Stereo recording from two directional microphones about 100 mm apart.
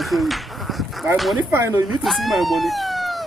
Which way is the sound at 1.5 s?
25° right (ahead or behind).